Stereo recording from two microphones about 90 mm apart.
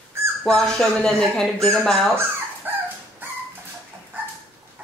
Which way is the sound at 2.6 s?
20° right (ahead or behind).